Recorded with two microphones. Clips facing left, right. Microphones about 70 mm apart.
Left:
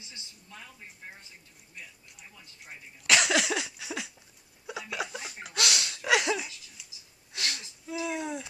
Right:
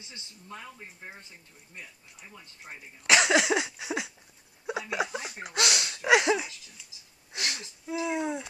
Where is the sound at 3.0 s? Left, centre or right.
Right.